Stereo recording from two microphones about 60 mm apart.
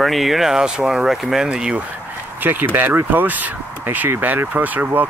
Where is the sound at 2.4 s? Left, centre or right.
Right.